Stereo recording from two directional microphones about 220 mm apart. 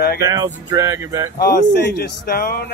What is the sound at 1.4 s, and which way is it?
Speech, 45° left (ahead or behind).